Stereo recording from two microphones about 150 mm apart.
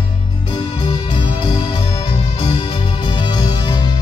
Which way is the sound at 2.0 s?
40° left (ahead or behind).